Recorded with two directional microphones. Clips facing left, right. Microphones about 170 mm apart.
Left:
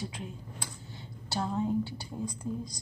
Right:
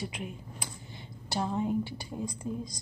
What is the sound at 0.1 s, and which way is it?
A woman's voice, 15° right (ahead or behind).